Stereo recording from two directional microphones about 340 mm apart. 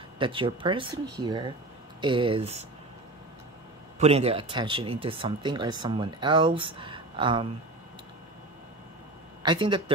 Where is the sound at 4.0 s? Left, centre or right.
Centre.